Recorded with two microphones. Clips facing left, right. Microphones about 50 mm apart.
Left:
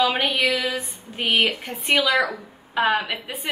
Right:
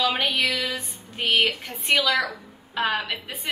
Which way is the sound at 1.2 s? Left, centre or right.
Centre.